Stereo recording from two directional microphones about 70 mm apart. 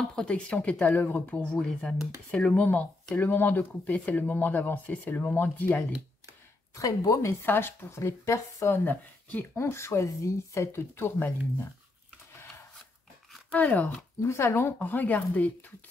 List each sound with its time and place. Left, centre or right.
0.1 s speech: centre
1.6 s speech: centre
2.6 s speech: left
6.7 s speech: left
7.4 s speech: left
9.6 s speech: left
13.5 s speech: left
14.2 s speech: left